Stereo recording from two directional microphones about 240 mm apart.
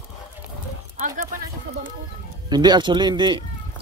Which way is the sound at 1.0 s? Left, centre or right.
Right.